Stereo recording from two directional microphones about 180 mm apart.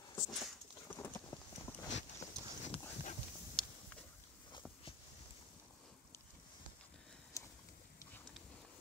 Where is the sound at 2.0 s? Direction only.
40° left (ahead or behind).